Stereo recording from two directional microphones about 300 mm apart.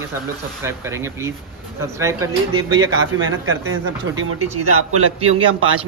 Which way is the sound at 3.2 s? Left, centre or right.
Right.